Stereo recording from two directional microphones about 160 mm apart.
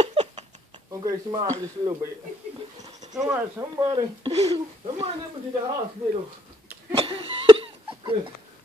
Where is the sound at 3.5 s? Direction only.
20° right (ahead or behind).